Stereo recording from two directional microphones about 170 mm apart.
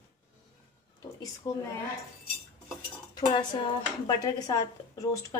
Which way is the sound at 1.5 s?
20° left (ahead or behind).